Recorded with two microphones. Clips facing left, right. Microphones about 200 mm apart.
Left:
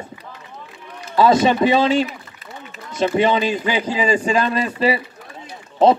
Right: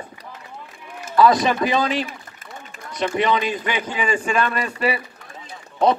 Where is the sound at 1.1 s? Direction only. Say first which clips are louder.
Left 2 dB; 25° left (ahead or behind).